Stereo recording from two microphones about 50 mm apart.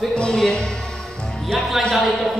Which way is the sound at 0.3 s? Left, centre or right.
Centre.